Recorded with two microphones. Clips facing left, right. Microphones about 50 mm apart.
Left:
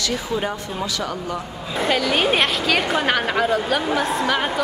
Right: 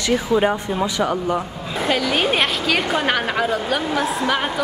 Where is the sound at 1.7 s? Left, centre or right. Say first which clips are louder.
Even; centre.